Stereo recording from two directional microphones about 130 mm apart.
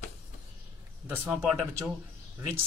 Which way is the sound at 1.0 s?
15° right (ahead or behind).